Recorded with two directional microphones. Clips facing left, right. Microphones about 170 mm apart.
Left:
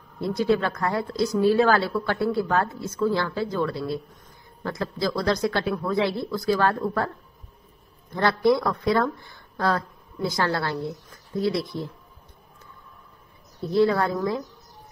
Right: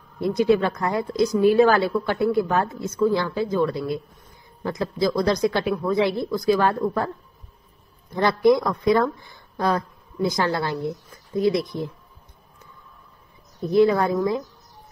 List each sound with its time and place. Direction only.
0.2 s a woman's voice: 20° right (ahead or behind)
8.1 s speech: 15° right (ahead or behind)
13.7 s a woman's voice: 15° right (ahead or behind)